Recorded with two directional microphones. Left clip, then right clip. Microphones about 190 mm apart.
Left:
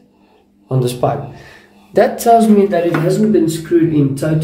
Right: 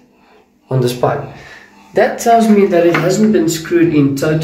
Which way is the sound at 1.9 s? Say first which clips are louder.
Even; 20° left (ahead or behind).